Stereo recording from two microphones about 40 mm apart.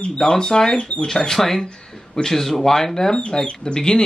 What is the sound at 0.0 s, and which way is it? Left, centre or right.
Speech, centre.